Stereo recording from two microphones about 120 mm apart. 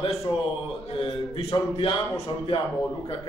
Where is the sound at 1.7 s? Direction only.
50° left (ahead or behind).